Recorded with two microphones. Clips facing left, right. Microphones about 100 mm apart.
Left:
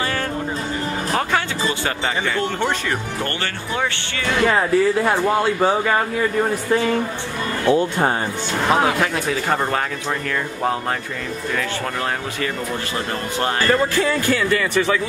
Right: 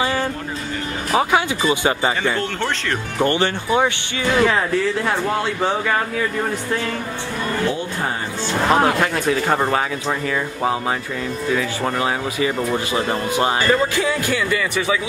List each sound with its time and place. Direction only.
1.1 s speech: 15° right (ahead or behind)
4.3 s speech: centre (ahead or behind)
8.6 s speech: centre (ahead or behind)
11.5 s speech: 10° right (ahead or behind)